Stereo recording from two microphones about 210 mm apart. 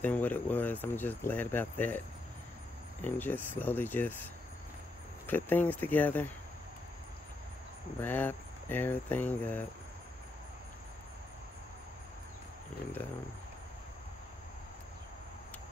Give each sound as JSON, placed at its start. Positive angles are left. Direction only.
{"t": 0.0, "sound": "speech", "side_deg": 10}
{"t": 5.2, "sound": "speech", "side_deg": 10}
{"t": 8.0, "sound": "speech", "side_deg": 10}